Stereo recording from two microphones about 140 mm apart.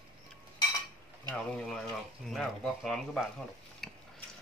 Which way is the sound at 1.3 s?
5° left (ahead or behind).